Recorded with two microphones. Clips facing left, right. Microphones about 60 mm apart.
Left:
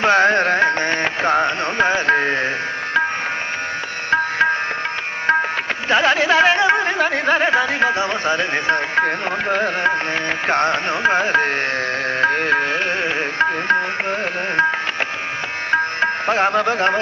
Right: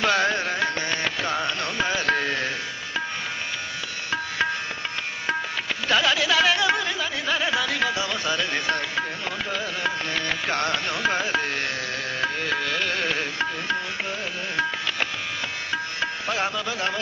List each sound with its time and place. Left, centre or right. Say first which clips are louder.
0.0 s music: left 8 dB; left
4.1 s music: left 9 dB; left
5.9 s speech: left 6 dB; left
7.0 s music: left 9 dB; left
9.0 s music: left 9 dB; left
15.7 s music: left 12 dB; left